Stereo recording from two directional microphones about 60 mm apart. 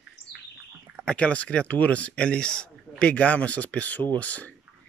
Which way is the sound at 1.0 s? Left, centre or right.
Centre.